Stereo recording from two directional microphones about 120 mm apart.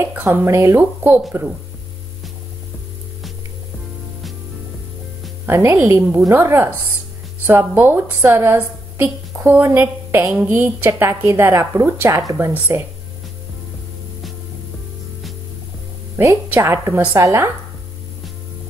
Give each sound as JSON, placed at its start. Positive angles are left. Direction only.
{"t": 0.0, "sound": "speech", "side_deg": -15}
{"t": 5.5, "sound": "a woman's voice", "side_deg": -20}
{"t": 12.5, "sound": "speech", "side_deg": -15}
{"t": 16.2, "sound": "a woman's voice", "side_deg": -20}